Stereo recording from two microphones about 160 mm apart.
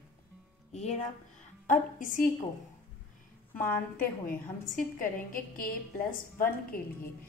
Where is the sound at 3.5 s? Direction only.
10° left (ahead or behind).